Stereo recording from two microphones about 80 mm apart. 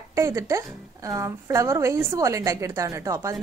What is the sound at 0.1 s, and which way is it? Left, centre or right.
A woman's voice, right.